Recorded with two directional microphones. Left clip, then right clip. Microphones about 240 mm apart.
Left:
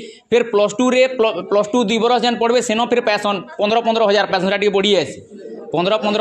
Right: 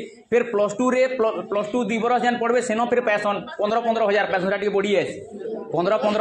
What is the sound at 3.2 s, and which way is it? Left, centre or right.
Speech, left.